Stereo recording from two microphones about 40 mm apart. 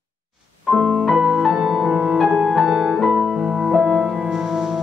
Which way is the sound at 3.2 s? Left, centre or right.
Centre.